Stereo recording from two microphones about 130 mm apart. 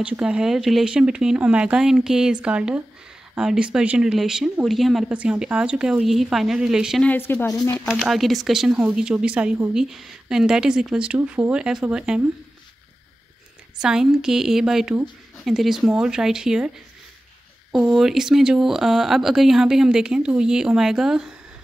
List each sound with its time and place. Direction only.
0.0 s speech: 10° right (ahead or behind)
7.0 s speech: 15° left (ahead or behind)
7.5 s speech: 30° left (ahead or behind)
8.0 s speech: centre (ahead or behind)
13.7 s speech: 5° right (ahead or behind)
17.7 s speech: centre (ahead or behind)